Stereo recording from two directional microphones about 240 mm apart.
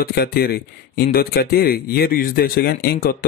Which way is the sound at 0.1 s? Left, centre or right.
Left.